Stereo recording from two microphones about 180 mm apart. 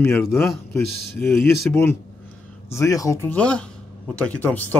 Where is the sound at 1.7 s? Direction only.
10° left (ahead or behind).